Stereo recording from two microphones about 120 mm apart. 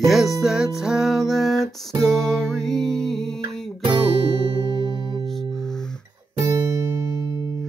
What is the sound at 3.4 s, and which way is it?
Music, 40° right (ahead or behind).